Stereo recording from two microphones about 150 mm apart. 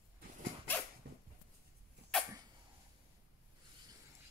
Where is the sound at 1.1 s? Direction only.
90° right.